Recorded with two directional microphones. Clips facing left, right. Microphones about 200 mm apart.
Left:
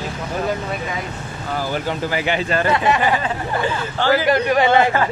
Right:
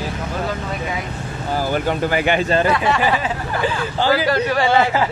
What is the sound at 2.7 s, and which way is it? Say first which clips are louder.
Speech: even; 20° left (ahead or behind).